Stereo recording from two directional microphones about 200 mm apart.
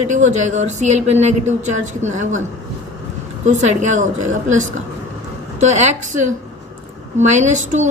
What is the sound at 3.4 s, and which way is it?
A woman's voice, 35° right (ahead or behind).